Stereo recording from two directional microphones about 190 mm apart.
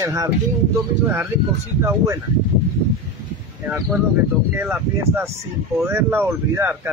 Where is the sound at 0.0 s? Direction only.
15° right (ahead or behind).